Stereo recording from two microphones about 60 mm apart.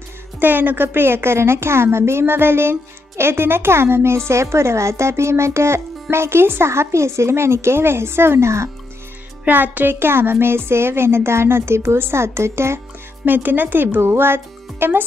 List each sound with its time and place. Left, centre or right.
0.4 s a woman's voice: right
9.5 s a woman's voice: right
13.2 s speech: right